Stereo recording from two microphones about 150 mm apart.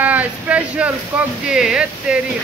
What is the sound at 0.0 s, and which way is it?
Speech, 10° right (ahead or behind).